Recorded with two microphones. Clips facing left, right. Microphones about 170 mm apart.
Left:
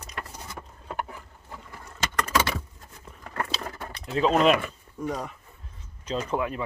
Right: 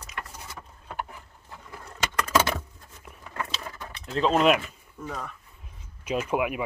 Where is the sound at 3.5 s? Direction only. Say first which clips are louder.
Left 3 dB; 35° left (ahead or behind).